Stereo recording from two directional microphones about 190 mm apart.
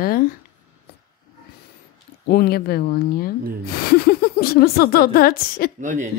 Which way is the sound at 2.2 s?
55° left (ahead or behind).